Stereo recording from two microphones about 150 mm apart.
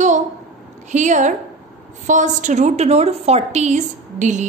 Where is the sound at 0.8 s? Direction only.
55° right (ahead or behind).